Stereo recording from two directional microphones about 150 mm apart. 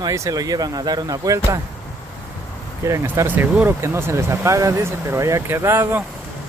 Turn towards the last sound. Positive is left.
turn(degrees=-15)  # may be behind; listen again after turning